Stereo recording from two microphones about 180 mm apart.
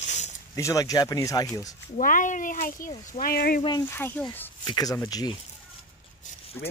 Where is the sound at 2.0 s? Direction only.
50° left (ahead or behind).